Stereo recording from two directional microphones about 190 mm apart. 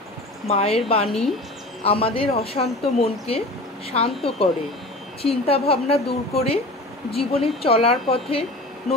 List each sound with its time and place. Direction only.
0.5 s a woman's voice: 30° left (ahead or behind)